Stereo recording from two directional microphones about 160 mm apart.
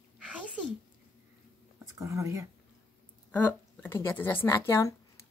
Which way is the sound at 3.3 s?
10° left (ahead or behind).